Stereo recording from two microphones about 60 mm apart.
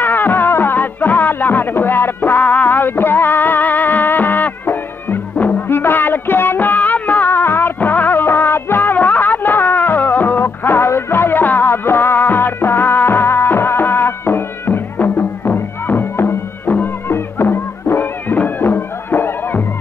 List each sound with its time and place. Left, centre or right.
0.0 s music: left
2.4 s music: left